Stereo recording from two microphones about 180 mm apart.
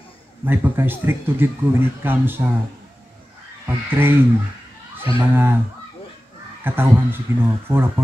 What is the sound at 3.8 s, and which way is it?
Speech, 10° right (ahead or behind).